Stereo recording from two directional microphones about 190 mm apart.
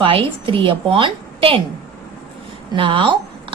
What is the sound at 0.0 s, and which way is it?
A woman's voice, 25° right (ahead or behind).